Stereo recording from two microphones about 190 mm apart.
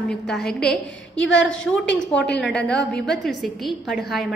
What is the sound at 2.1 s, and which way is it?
Speech, 65° left (ahead or behind).